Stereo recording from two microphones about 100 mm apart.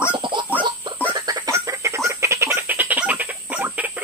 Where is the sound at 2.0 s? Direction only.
30° right (ahead or behind).